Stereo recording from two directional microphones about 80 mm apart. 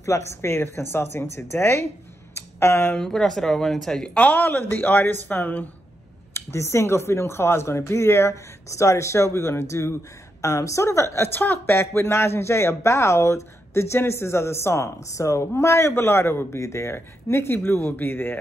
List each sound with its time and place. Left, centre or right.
0.0 s speech: left
2.3 s a sound: left
3.0 s speech: centre
4.1 s speech: centre
6.3 s speech: left